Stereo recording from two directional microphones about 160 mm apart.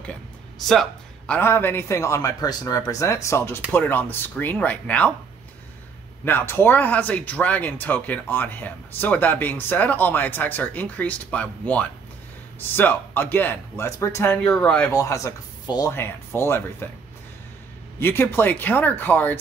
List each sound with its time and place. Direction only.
0.7 s speech: 5° left (ahead or behind)
6.2 s speech: 15° left (ahead or behind)
15.0 s speech: 20° left (ahead or behind)
17.9 s speech: 15° left (ahead or behind)